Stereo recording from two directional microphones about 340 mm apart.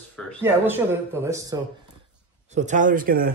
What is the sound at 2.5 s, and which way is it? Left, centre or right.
Speech, right.